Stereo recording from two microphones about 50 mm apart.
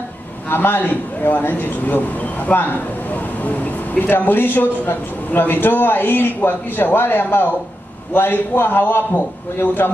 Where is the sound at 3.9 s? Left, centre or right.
Left.